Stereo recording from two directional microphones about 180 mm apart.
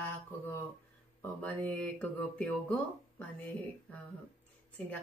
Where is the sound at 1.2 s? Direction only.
10° left (ahead or behind).